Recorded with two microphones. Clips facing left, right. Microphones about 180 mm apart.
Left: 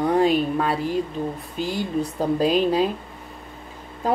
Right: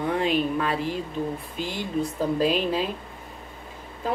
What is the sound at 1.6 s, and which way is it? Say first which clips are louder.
A woman's voice: left 4 dB; 40° left (ahead or behind).